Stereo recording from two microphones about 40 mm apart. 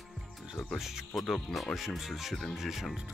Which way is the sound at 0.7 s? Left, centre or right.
Centre.